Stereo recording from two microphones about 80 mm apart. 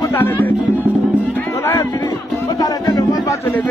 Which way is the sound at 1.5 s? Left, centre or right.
Left.